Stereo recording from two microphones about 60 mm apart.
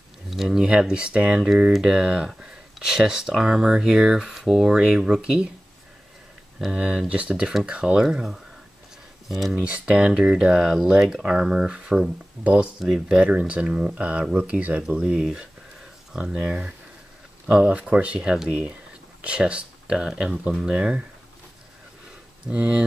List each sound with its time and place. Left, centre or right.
0.3 s speech: centre
6.6 s speech: centre
22.5 s speech: centre